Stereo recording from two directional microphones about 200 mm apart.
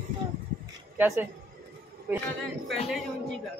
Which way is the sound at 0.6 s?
10° right (ahead or behind).